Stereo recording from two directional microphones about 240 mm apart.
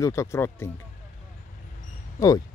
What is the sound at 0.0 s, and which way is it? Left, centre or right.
Speech, centre.